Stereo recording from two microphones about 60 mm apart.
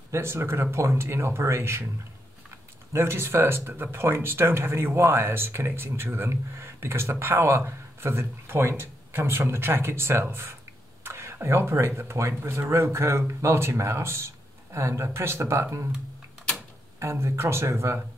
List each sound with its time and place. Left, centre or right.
0.1 s speech: right
2.9 s speech: right
11.1 s a sound: right
11.4 s speech: right
17.0 s speech: right